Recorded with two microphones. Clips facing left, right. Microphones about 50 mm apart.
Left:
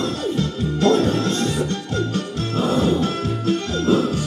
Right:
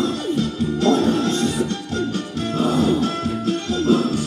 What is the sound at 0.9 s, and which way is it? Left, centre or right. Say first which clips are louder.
Music: right 1 dB; left.